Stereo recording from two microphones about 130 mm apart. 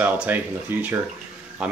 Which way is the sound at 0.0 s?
15° right (ahead or behind).